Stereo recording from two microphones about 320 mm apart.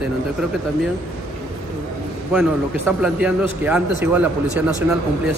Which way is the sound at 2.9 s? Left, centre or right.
Centre.